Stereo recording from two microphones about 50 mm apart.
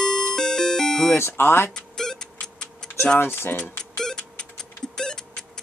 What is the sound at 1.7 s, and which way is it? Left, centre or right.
Tick, centre.